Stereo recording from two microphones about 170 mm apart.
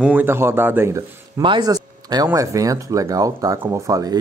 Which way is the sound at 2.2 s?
20° right (ahead or behind).